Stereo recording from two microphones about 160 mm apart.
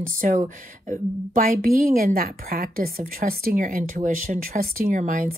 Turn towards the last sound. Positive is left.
turn(degrees=-55)  # may be behind; listen again after turning